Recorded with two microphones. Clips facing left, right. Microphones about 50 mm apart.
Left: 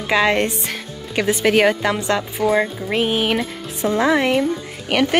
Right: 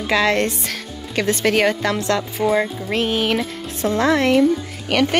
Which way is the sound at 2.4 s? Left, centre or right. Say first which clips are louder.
Left 1 dB; centre.